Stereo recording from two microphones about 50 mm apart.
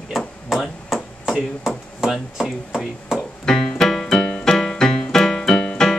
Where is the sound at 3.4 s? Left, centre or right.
Centre.